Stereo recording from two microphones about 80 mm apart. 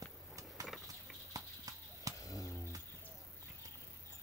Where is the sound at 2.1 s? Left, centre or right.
Left.